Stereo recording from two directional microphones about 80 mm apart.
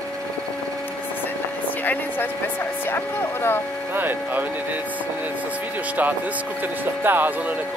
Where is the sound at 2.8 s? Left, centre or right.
Left.